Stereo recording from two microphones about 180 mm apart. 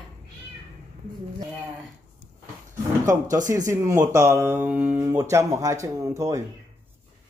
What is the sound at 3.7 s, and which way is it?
Speech, 15° right (ahead or behind).